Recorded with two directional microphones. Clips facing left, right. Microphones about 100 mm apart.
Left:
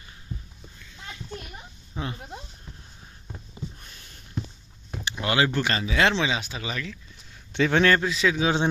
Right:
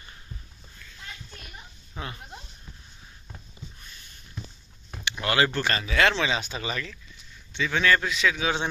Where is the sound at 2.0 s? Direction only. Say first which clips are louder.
Left 4 dB; 20° left (ahead or behind).